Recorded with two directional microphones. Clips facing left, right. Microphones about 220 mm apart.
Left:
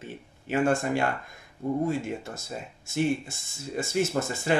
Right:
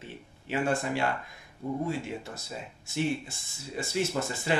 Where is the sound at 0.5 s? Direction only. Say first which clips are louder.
Left 4 dB; 50° left (ahead or behind).